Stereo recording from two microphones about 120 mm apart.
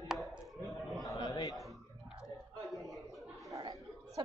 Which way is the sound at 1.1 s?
30° left (ahead or behind).